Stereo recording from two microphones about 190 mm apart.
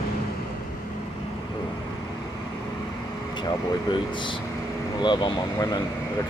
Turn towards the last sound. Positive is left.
turn(degrees=20)  # may be behind; listen again after turning